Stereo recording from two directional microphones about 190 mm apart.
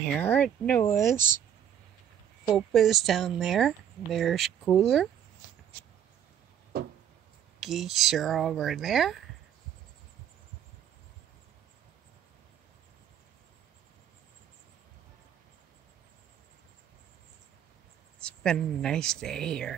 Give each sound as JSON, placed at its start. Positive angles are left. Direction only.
{"t": 0.1, "sound": "speech", "side_deg": 5}
{"t": 2.5, "sound": "speech", "side_deg": 0}
{"t": 6.7, "sound": "a sound", "side_deg": -55}
{"t": 7.6, "sound": "speech", "side_deg": 0}
{"t": 18.2, "sound": "speech", "side_deg": 5}